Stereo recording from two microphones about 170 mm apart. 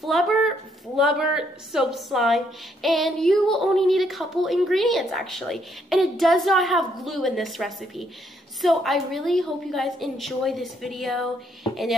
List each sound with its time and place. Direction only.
0.0 s a woman's voice: centre (ahead or behind)